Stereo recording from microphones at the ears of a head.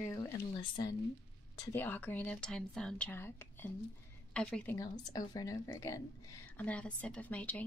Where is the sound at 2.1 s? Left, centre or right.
Centre.